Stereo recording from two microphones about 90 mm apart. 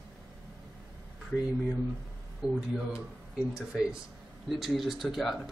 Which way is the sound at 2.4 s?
10° right (ahead or behind).